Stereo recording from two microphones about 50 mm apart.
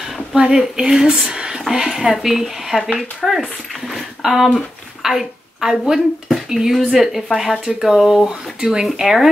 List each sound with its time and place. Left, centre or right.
0.3 s speech: centre
1.7 s a woman's voice: centre